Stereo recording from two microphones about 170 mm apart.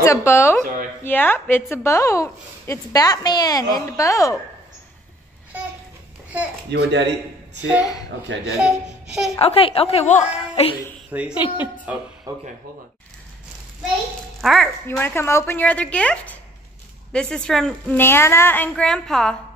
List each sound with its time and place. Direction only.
0.0 s a woman's voice: 15° left (ahead or behind)
6.7 s a man's voice: 85° right
7.8 s a woman's voice: 20° left (ahead or behind)
8.5 s a woman's voice: 5° right (ahead or behind)
9.4 s a woman's voice: 35° left (ahead or behind)
11.1 s a woman's voice: 10° right (ahead or behind)
14.4 s speech: centre (ahead or behind)
14.9 s a woman's voice: 15° left (ahead or behind)